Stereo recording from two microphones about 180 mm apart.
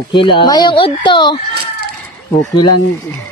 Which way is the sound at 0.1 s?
25° left (ahead or behind).